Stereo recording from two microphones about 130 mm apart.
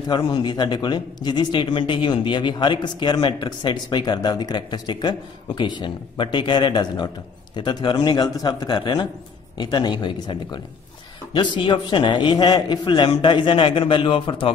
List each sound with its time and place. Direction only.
0.1 s speech: 35° left (ahead or behind)